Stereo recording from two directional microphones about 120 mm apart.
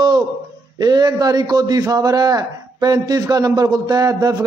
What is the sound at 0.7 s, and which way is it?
A man's voice, 35° right (ahead or behind).